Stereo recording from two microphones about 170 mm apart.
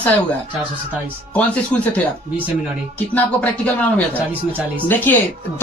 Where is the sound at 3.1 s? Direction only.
10° left (ahead or behind).